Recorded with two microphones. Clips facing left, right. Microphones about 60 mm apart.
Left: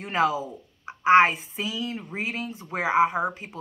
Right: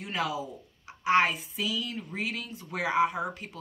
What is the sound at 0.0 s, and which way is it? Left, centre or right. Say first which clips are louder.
A woman's voice: left 7 dB; left.